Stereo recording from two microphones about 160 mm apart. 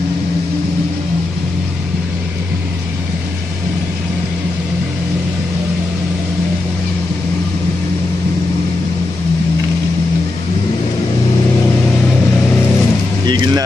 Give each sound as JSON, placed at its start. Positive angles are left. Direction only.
{"t": 13.3, "sound": "vehicle", "side_deg": -25}